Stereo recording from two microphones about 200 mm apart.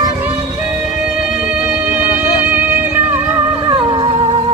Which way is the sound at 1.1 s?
5° right (ahead or behind).